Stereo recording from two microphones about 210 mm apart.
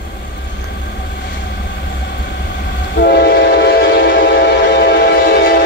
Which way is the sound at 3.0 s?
50° left (ahead or behind).